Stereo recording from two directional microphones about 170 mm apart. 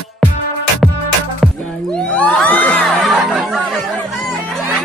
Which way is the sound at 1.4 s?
5° left (ahead or behind).